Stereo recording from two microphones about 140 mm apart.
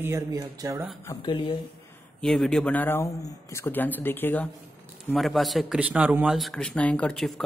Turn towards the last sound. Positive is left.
turn(degrees=0)  # may be behind; listen again after turning